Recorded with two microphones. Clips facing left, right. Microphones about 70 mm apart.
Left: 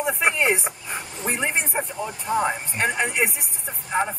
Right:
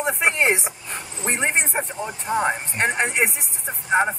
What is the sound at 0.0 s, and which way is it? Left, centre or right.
Speech, centre.